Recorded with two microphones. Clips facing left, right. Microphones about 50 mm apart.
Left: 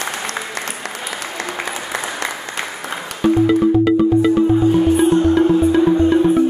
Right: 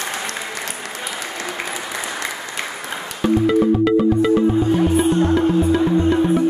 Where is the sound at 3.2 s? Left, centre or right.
Centre.